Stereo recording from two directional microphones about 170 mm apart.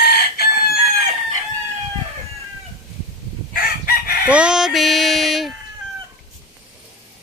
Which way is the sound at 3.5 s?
60° left (ahead or behind).